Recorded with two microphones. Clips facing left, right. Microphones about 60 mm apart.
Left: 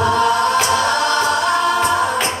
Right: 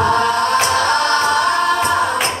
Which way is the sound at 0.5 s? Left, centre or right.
Right.